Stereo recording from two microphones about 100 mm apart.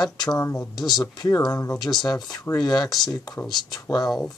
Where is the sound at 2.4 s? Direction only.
40° left (ahead or behind).